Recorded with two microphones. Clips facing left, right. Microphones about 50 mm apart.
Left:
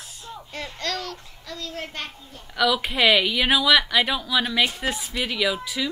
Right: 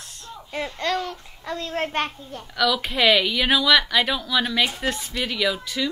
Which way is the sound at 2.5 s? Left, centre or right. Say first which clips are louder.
Even; centre.